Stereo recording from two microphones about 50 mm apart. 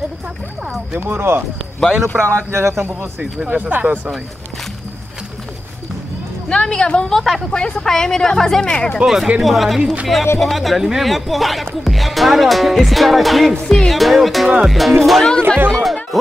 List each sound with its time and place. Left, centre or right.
0.9 s speech: right
1.8 s speech: centre
2.1 s speech: right
3.4 s speech: right
6.5 s a woman's voice: centre
7.1 s speech: centre
7.5 s speech: centre
9.0 s speech: centre
15.4 s speech: right
15.8 s speech: centre